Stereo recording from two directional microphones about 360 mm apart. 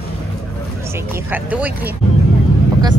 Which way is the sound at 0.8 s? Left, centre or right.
Centre.